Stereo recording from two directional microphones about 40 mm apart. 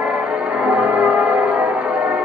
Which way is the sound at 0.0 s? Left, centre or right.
Right.